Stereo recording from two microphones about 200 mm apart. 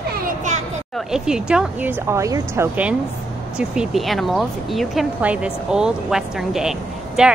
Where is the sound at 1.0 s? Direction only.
5° right (ahead or behind).